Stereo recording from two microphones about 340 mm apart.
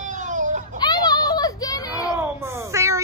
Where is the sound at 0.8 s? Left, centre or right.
Centre.